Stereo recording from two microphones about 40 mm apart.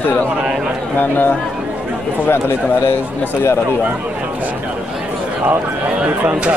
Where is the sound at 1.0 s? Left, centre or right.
Left.